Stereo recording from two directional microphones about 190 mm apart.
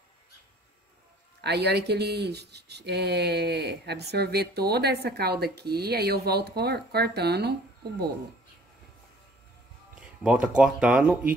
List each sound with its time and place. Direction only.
1.4 s speech: 60° right (ahead or behind)
10.2 s speech: 5° right (ahead or behind)